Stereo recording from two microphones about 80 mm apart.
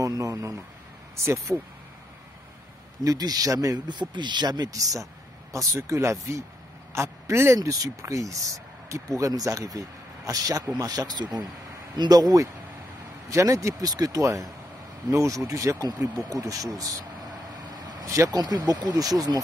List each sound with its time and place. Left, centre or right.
0.0 s speech: right
3.0 s speech: right
3.8 s speech: right
13.3 s speech: right
18.0 s speech: right
18.4 s speech: right